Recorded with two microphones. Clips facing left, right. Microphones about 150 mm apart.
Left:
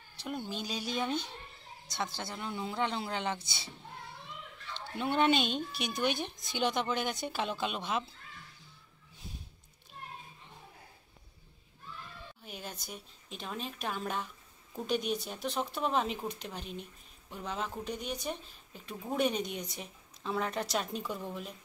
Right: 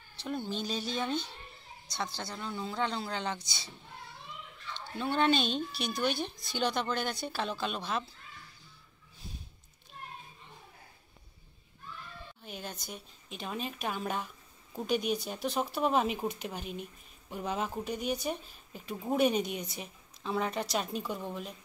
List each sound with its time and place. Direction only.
0.2 s speech: 10° left (ahead or behind)
1.9 s a woman's voice: 20° left (ahead or behind)
4.9 s speech: 15° left (ahead or behind)
12.4 s speech: centre (ahead or behind)